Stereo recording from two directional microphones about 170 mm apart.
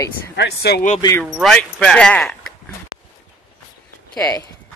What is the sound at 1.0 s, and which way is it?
Speech, 20° left (ahead or behind).